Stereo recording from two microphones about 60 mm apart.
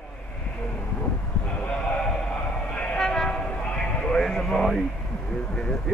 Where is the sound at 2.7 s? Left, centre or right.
Centre.